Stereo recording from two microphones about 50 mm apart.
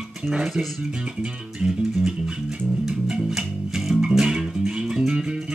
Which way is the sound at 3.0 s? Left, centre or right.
Centre.